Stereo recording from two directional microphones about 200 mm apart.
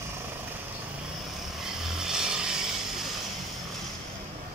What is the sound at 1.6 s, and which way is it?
Vehicle, 5° right (ahead or behind).